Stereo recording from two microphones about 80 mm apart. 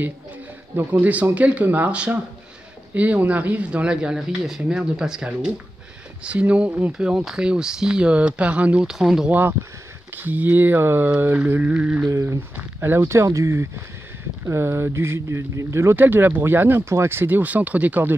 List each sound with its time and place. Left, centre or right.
1.0 s speech: centre
8.8 s speech: centre
9.3 s speech: right
12.1 s speech: right
12.5 s speech: right
13.0 s speech: right